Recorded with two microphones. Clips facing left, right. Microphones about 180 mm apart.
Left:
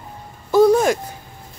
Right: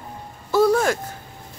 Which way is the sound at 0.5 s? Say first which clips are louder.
Left 4 dB; 15° left (ahead or behind).